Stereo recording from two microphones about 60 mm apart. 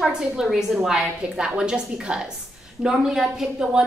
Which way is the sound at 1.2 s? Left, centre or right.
Centre.